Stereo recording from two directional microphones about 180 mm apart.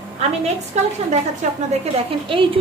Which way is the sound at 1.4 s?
40° right (ahead or behind).